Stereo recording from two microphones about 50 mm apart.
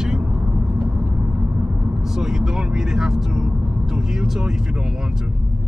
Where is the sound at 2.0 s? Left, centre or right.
Centre.